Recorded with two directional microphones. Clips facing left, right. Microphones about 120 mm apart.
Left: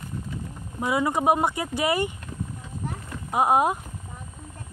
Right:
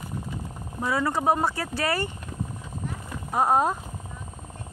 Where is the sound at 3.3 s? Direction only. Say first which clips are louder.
Left 1 dB; 10° left (ahead or behind).